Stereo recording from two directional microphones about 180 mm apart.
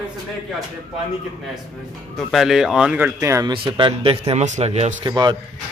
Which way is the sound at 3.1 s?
20° right (ahead or behind).